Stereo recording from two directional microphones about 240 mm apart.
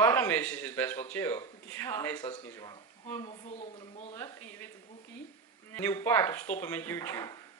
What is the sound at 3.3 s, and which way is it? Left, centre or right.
Speech, left.